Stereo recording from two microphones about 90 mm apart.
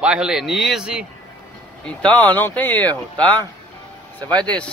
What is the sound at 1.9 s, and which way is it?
Speech, 10° left (ahead or behind).